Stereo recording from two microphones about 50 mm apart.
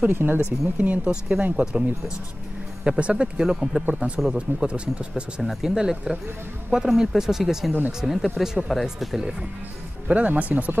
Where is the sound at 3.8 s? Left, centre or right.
Right.